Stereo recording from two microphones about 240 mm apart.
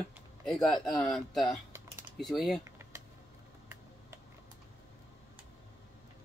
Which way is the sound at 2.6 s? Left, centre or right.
Centre.